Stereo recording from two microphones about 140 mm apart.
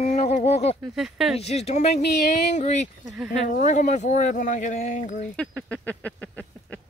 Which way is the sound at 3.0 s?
5° right (ahead or behind).